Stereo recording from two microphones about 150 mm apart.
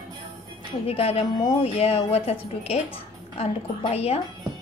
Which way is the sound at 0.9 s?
40° left (ahead or behind).